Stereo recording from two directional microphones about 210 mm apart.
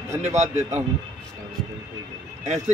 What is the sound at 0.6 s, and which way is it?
Speech, 10° right (ahead or behind).